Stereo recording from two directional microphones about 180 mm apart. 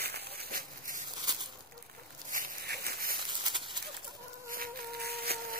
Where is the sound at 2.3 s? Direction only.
55° right (ahead or behind).